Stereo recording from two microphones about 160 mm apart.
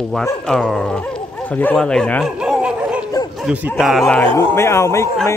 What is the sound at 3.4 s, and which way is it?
Speech, 5° right (ahead or behind).